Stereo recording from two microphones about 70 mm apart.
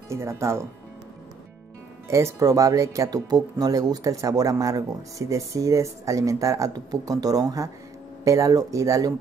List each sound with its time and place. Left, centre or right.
0.1 s speech: right
2.0 s speech: right
2.3 s speech: right
3.1 s speech: right
6.7 s speech: right